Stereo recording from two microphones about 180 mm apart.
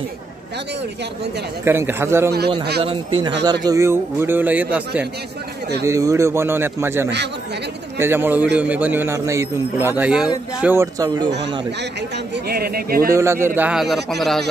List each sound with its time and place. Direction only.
1.6 s a man's voice: 10° right (ahead or behind)
2.8 s a man's voice: 30° right (ahead or behind)
3.6 s a man's voice: 15° right (ahead or behind)
12.4 s a man's voice: 55° right (ahead or behind)
13.1 s a man's voice: 15° right (ahead or behind)
13.6 s speech: 5° right (ahead or behind)